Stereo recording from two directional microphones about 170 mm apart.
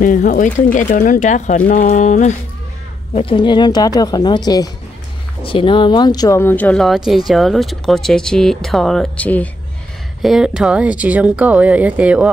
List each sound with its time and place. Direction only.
0.0 s speech: 50° left (ahead or behind)
3.2 s speech: 30° left (ahead or behind); by 9.5 s 10° left (ahead or behind)
10.2 s speech: 5° right (ahead or behind)